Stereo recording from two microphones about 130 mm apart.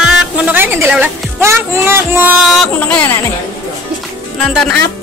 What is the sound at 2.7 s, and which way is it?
Speech, 10° left (ahead or behind).